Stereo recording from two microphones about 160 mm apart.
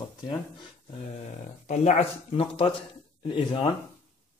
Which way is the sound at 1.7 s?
40° left (ahead or behind).